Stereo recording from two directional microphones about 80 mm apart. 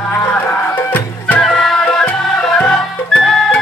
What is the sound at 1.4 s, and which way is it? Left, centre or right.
Music, centre.